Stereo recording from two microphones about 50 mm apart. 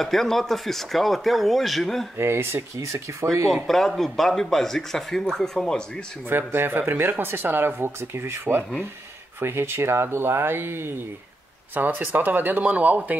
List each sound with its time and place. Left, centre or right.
0.0 s speech: centre
2.1 s speech: right
3.5 s a man's voice: centre
6.2 s speech: right
11.7 s speech: right